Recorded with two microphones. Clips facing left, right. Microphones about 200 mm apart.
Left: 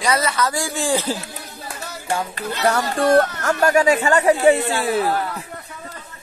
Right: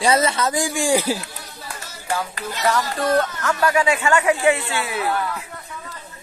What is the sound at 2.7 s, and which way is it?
Speech, 45° left (ahead or behind).